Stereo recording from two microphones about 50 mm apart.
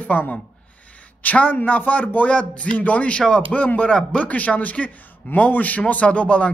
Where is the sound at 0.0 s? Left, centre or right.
Left; by 3.4 s centre.